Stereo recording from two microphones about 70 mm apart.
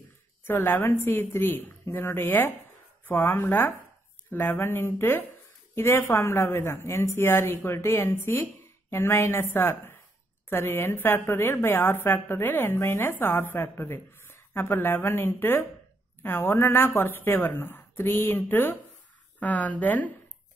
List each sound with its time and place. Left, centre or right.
0.7 s speech: left